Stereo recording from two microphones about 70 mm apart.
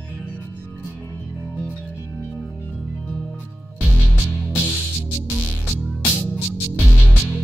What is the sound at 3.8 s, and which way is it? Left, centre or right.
Music, centre.